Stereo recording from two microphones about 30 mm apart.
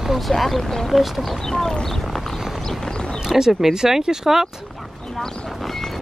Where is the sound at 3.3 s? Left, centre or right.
Centre.